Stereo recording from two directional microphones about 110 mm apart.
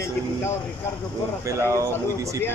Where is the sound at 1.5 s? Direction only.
30° right (ahead or behind).